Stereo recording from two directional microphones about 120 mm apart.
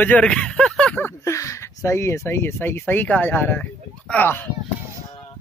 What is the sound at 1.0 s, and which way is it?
Speech, 25° left (ahead or behind).